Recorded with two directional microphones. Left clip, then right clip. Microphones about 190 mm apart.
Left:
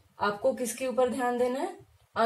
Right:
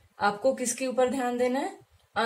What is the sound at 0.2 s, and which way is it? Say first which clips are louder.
A woman's voice: right 2 dB; 15° left (ahead or behind).